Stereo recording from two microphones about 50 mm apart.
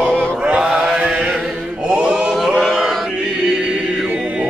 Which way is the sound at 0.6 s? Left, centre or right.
Centre.